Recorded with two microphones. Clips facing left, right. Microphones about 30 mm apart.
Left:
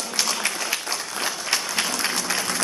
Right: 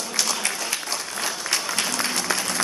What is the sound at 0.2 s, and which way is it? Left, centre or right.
Applause, centre.